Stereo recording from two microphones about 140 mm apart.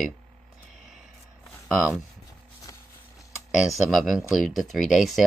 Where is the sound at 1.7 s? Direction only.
10° right (ahead or behind).